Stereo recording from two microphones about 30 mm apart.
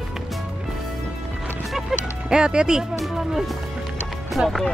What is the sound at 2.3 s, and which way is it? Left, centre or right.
Speech, right.